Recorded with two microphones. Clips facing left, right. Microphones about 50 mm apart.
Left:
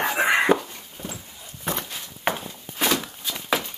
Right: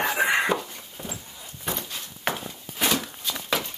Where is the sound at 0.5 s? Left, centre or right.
Left.